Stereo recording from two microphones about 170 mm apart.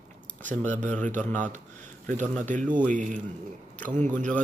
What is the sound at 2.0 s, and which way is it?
Speech, 45° right (ahead or behind).